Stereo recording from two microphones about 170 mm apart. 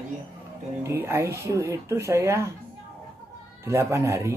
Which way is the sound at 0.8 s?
15° right (ahead or behind).